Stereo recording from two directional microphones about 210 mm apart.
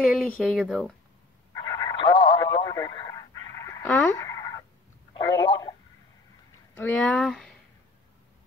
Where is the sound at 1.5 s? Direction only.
15° left (ahead or behind).